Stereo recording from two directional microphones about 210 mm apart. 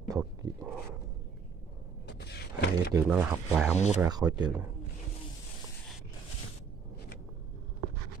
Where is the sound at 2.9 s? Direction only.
10° right (ahead or behind).